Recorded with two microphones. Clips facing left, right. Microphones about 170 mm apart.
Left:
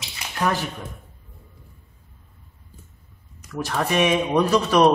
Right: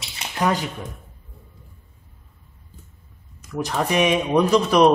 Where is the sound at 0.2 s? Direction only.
15° right (ahead or behind).